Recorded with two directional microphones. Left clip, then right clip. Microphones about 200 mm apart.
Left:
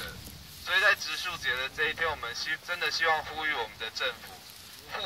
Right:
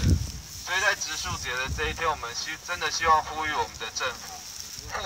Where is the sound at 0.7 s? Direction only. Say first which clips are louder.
Left 1 dB; 10° left (ahead or behind).